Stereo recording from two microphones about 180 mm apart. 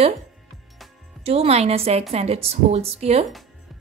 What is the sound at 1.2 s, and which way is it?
A woman's voice, 35° right (ahead or behind).